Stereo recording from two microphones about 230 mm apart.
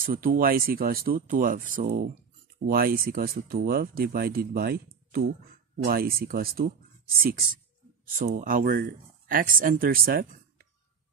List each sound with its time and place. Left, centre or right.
0.0 s speech: right